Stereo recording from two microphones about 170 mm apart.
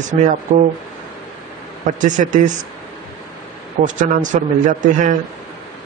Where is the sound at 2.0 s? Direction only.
50° right (ahead or behind).